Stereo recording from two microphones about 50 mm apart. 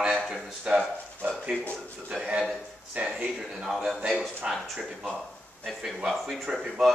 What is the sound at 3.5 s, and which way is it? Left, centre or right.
Speech, centre.